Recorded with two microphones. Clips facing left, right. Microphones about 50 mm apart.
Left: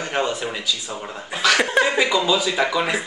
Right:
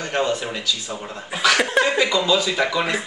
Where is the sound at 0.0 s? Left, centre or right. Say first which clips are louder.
Right 1 dB; centre.